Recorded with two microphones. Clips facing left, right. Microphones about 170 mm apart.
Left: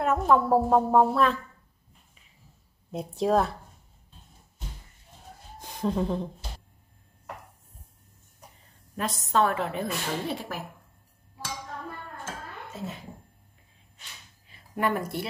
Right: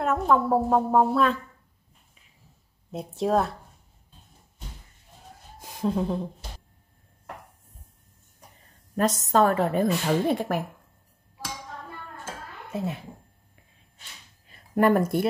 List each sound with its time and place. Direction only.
0.0 s a woman's voice: centre (ahead or behind)
2.9 s a woman's voice: centre (ahead or behind)
5.6 s speech: centre (ahead or behind)
8.9 s a woman's voice: 40° right (ahead or behind)
14.5 s a sound: 45° right (ahead or behind)